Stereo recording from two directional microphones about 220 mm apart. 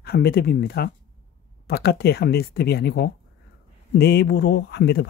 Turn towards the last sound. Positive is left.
turn(degrees=50)  # may be behind; listen again after turning